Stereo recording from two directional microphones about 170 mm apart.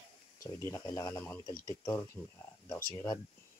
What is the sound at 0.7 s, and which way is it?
Speech, 20° left (ahead or behind).